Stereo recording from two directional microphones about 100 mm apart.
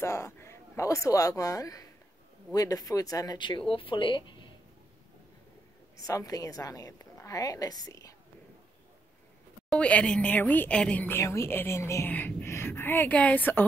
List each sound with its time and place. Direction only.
0.0 s a man's voice: 25° left (ahead or behind); by 4.5 s 55° left (ahead or behind)
5.9 s a woman's voice: 35° left (ahead or behind)
9.7 s a woman's voice: 10° left (ahead or behind)